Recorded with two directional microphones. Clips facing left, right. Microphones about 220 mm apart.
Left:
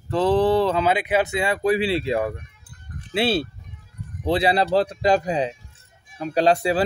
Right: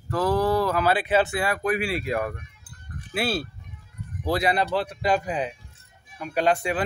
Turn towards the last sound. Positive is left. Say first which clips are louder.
# left 4 dB
turn(degrees=35)  # may be behind; listen again after turning